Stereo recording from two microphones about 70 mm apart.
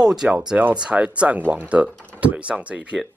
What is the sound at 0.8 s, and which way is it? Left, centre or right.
Speech, centre.